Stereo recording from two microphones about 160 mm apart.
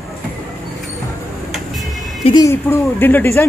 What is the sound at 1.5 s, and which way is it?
Vehicle, centre (ahead or behind).